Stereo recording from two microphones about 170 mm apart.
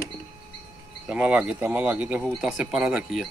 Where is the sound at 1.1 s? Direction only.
5° right (ahead or behind).